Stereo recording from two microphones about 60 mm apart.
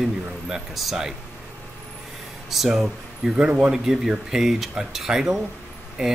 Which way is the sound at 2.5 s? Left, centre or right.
Centre.